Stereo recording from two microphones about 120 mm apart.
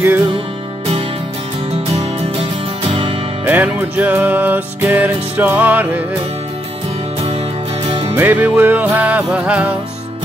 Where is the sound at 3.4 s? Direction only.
15° right (ahead or behind).